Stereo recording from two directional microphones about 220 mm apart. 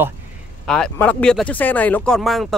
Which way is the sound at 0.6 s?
5° left (ahead or behind).